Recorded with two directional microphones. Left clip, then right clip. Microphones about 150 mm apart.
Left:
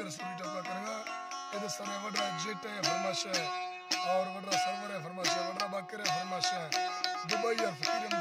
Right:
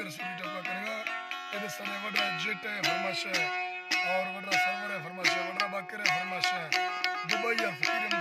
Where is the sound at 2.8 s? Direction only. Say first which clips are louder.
Right 1 dB; 20° left (ahead or behind).